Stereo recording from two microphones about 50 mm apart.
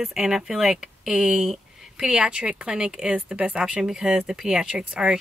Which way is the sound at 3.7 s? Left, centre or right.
Centre.